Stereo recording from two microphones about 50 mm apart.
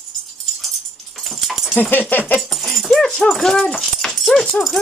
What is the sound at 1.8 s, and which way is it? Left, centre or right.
Speech, left.